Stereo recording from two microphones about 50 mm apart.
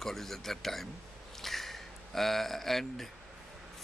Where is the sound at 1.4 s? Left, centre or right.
Centre.